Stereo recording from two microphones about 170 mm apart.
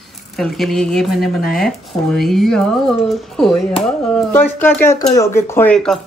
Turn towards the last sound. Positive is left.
turn(degrees=5)  # may be behind; listen again after turning